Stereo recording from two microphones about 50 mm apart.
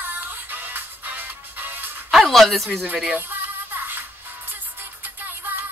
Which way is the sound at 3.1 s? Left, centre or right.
Right.